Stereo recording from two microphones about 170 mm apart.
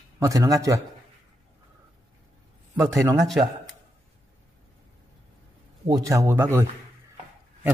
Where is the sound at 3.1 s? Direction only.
Centre (ahead or behind).